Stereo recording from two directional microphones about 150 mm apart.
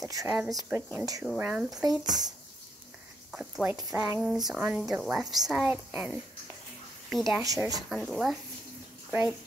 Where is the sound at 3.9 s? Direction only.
15° right (ahead or behind).